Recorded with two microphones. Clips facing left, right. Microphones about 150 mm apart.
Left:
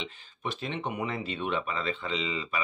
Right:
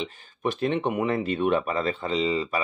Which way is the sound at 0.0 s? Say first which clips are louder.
Right 8 dB; 50° right (ahead or behind).